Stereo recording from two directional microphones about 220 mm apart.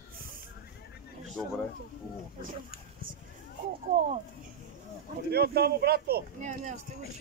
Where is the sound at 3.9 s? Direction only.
35° right (ahead or behind).